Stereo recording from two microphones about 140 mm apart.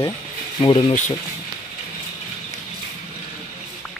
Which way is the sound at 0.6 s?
40° left (ahead or behind).